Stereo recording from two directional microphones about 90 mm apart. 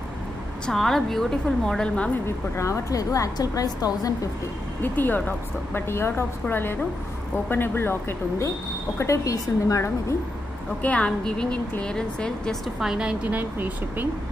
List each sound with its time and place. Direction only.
0.7 s a woman's voice: 5° left (ahead or behind)
2.2 s a woman's voice: 30° left (ahead or behind)
4.8 s a woman's voice: 20° left (ahead or behind); by 10.1 s 35° left (ahead or behind)
10.8 s a woman's voice: 15° left (ahead or behind)
12.8 s speech: 10° right (ahead or behind)